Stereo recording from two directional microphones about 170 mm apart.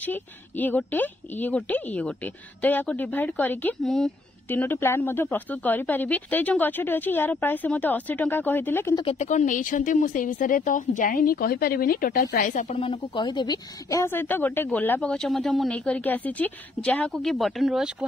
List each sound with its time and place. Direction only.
0.0 s speech: 10° left (ahead or behind)
9.2 s a woman's voice: 45° left (ahead or behind)
12.7 s speech: 30° left (ahead or behind); by 17.9 s 5° right (ahead or behind)